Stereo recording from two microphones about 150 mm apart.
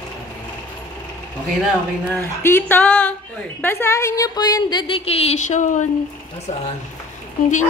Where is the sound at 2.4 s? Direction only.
15° left (ahead or behind); by 5.8 s 55° left (ahead or behind).